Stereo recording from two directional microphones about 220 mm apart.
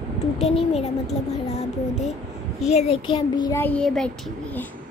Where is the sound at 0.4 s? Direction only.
30° left (ahead or behind).